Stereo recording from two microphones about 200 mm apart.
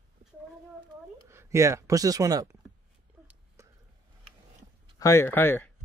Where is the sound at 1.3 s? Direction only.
15° right (ahead or behind).